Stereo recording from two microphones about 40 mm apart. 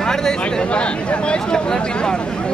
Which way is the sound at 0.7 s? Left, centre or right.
Left.